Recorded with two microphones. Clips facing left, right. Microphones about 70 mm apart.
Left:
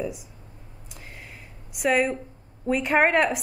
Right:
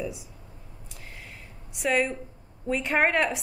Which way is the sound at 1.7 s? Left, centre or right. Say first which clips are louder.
Left 3 dB; centre.